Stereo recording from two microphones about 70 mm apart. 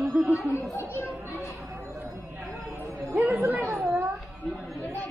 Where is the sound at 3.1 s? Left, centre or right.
Right.